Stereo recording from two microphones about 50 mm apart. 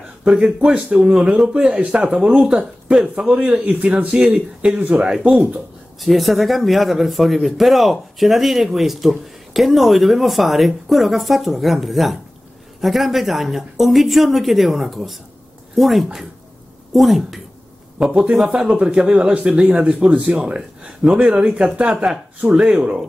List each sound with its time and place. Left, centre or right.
0.2 s speech: centre
5.9 s speech: centre
18.8 s speech: centre